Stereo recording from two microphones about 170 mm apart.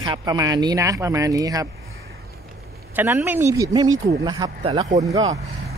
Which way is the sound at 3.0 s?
10° right (ahead or behind).